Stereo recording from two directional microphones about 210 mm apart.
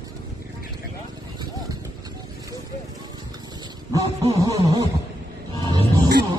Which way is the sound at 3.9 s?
15° right (ahead or behind).